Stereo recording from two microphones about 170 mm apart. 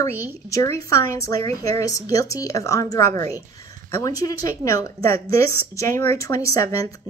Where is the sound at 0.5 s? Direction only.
20° left (ahead or behind).